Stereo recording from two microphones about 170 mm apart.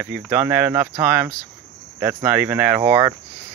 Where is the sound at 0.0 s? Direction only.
10° right (ahead or behind).